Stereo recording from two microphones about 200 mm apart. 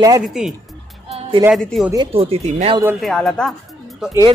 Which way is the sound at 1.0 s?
30° right (ahead or behind).